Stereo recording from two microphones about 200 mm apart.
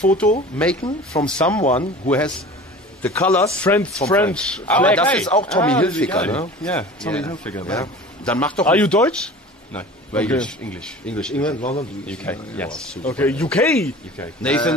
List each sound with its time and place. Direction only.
0.6 s a man's voice: 5° left (ahead or behind)
11.6 s speech: 30° left (ahead or behind)
12.1 s a man's voice: 5° left (ahead or behind)